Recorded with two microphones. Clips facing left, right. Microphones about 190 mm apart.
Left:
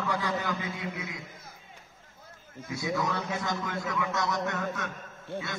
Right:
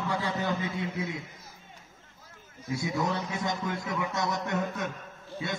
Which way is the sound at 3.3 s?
20° right (ahead or behind).